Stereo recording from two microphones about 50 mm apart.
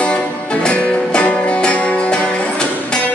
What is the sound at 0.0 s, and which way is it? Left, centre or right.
Music, left.